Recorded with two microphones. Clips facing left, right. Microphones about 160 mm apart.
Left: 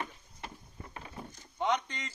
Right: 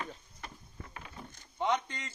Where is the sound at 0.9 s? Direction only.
25° left (ahead or behind).